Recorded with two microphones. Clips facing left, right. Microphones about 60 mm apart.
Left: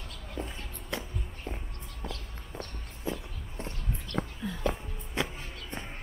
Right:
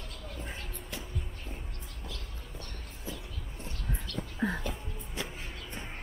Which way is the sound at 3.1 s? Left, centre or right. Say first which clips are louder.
Left 7 dB; left.